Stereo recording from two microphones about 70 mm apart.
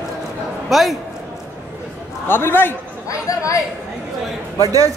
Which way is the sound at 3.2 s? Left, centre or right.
Left.